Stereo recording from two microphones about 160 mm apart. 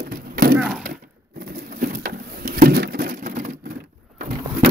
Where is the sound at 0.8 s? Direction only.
80° right.